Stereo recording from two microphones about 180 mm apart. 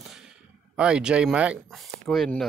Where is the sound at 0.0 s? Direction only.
Centre (ahead or behind).